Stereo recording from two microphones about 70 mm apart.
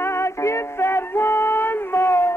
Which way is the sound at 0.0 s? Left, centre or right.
Left.